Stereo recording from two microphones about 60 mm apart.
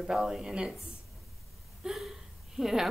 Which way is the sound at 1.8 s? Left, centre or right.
Centre.